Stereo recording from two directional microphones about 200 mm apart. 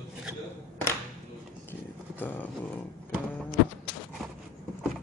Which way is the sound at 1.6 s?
10° left (ahead or behind).